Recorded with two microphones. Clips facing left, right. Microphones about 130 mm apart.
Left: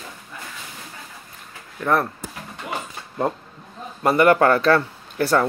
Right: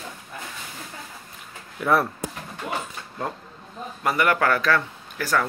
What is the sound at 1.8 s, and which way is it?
Speech, 5° right (ahead or behind).